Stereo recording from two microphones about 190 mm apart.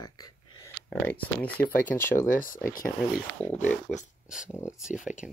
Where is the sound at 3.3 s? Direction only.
10° left (ahead or behind).